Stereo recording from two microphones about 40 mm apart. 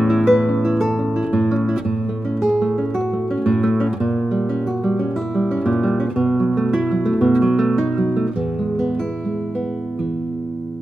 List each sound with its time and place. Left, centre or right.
0.0 s music: centre
2.4 s music: centre
3.4 s guitar: centre
3.7 s guitar: centre
6.3 s music: centre